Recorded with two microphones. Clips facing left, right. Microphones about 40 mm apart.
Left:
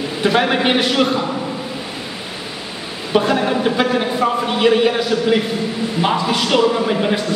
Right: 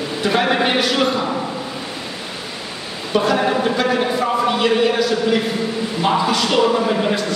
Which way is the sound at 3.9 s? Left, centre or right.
Centre.